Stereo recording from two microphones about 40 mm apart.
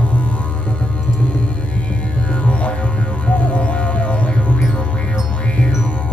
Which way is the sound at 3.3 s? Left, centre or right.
Left.